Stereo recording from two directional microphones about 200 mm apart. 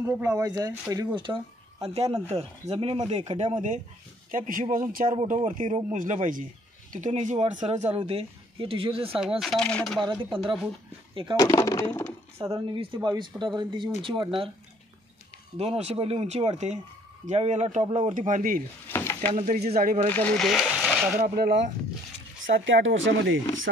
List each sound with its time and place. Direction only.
0.0 s speech: 10° right (ahead or behind); by 5.2 s 45° right (ahead or behind)
5.2 s speech: 30° right (ahead or behind)
9.4 s speech: centre (ahead or behind)
9.9 s speech: 25° right (ahead or behind)
11.3 s speech: 15° left (ahead or behind)
12.4 s speech: 25° right (ahead or behind)
15.5 s speech: 30° right (ahead or behind)
18.9 s stir: 10° left (ahead or behind)
19.3 s speech: 40° right (ahead or behind)
20.1 s speech: 5° left (ahead or behind)
21.2 s speech: 55° right (ahead or behind)
22.5 s speech: 70° right (ahead or behind)